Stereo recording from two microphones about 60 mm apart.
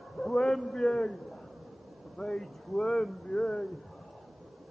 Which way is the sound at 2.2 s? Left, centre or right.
Centre.